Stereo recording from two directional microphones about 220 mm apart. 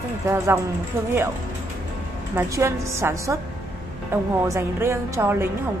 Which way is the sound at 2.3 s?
15° right (ahead or behind).